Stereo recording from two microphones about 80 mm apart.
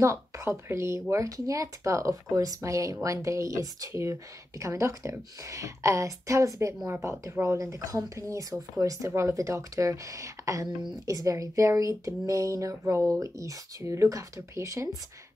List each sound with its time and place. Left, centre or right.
0.0 s speech: right